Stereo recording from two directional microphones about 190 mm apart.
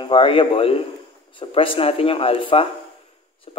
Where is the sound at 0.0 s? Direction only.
25° left (ahead or behind).